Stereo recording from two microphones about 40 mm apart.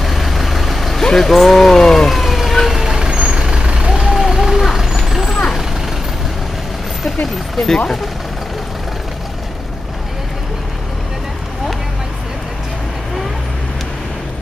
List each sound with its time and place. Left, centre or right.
0.0 s vehicle: centre
2.8 s vehicle: centre
4.1 s vehicle: centre
7.5 s speech: centre